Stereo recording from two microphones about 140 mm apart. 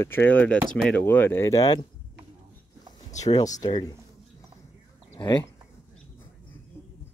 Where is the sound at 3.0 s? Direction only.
55° left (ahead or behind).